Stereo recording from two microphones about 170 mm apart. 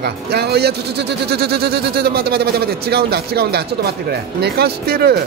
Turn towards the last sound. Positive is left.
turn(degrees=-65)  # may be behind; listen again after turning